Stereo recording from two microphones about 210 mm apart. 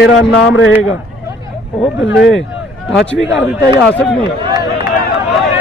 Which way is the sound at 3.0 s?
60° left (ahead or behind).